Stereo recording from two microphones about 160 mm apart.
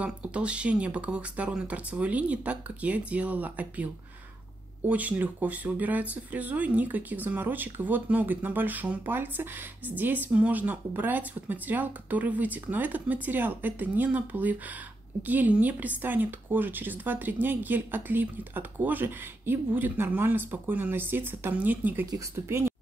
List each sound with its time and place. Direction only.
0.0 s speech: 5° right (ahead or behind)